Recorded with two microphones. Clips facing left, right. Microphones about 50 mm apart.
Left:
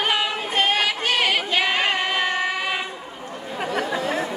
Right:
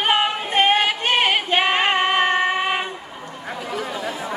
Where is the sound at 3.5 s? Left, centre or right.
Left.